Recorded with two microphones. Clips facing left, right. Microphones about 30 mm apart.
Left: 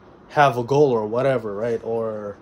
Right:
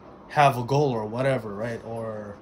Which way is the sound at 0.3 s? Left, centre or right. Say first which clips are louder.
Left 3 dB; centre.